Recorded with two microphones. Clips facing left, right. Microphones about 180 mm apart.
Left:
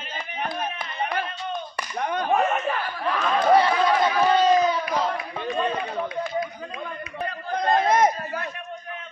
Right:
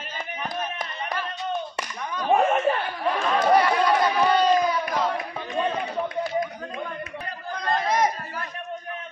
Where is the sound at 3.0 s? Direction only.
20° right (ahead or behind).